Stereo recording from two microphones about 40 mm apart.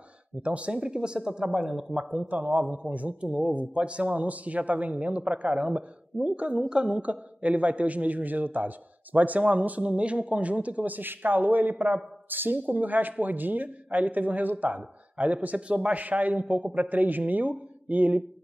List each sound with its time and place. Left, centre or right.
0.4 s speech: right; by 2.1 s centre
2.1 s a man's voice: right